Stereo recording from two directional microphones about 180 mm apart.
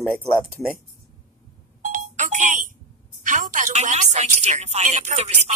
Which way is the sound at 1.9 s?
45° right (ahead or behind).